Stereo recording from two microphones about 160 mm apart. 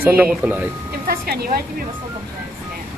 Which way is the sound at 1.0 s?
75° right (ahead or behind).